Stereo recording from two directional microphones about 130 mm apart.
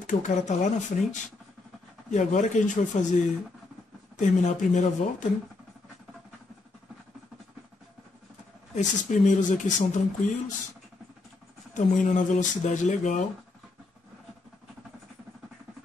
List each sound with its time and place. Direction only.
0.0 s speech: 65° left (ahead or behind)
4.2 s speech: 70° left (ahead or behind)
8.7 s speech: 75° left (ahead or behind)
11.7 s speech: 70° left (ahead or behind)